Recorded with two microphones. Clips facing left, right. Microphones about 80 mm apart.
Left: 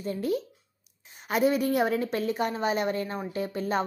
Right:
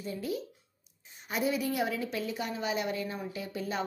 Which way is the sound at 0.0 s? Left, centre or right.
Left.